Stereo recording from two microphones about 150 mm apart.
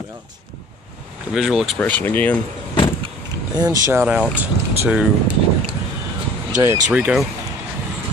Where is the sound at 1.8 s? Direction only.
10° left (ahead or behind).